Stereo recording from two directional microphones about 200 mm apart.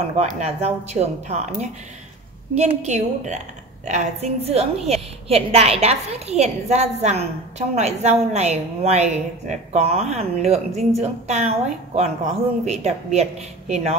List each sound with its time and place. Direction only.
0.2 s a woman's voice: 35° right (ahead or behind)